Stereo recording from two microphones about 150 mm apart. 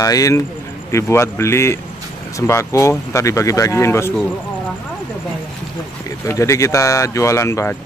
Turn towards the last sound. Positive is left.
turn(degrees=20)  # may be behind; listen again after turning